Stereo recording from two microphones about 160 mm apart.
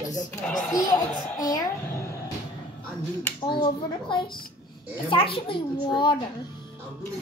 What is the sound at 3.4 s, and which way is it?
A child's voice, 30° left (ahead or behind).